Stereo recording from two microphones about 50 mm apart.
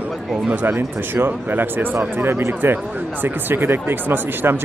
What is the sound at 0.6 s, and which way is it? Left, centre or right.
Speech, right.